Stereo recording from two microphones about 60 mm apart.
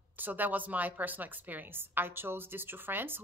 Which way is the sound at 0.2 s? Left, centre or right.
Right.